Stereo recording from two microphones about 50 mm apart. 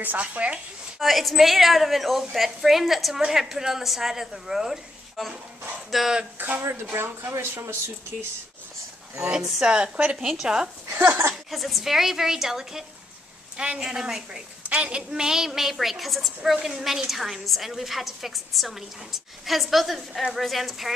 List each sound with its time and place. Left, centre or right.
0.0 s speech: right
0.9 s a woman's voice: centre
6.3 s speech: right
6.6 s speech: right
9.3 s a woman's voice: centre
9.7 s speech: right
10.1 s a woman's voice: centre
11.0 s speech: right
11.5 s a woman's voice: centre
14.7 s a woman's voice: right; by 20.9 s centre